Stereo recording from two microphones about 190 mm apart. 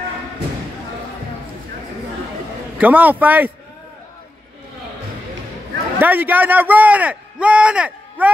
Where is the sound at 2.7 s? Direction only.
10° right (ahead or behind).